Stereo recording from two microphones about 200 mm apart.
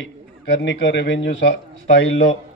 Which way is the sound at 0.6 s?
65° left (ahead or behind).